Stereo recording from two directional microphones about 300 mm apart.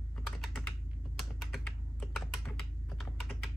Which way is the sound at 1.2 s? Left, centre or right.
Centre.